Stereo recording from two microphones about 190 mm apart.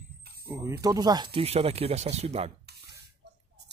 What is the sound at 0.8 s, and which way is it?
Speech, 20° right (ahead or behind).